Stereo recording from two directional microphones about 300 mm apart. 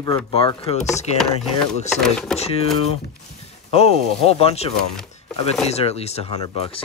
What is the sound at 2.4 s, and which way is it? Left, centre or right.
Speech, centre.